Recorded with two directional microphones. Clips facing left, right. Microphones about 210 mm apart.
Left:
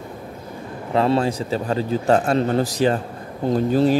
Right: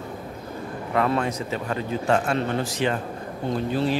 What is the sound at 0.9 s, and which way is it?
Speech, 30° left (ahead or behind).